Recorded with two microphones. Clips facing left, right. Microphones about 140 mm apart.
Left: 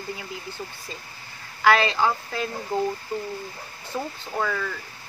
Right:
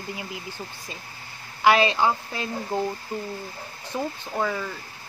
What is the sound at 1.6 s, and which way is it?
Speech, 20° right (ahead or behind).